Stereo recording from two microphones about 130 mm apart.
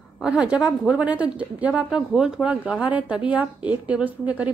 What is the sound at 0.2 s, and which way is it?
A woman's voice, 5° right (ahead or behind).